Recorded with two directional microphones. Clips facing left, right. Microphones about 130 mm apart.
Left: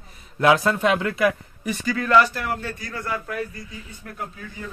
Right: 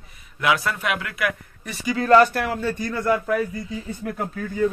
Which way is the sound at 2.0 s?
40° right (ahead or behind).